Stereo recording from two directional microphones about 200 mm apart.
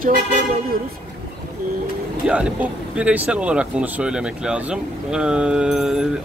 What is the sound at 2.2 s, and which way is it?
Speech, 5° right (ahead or behind).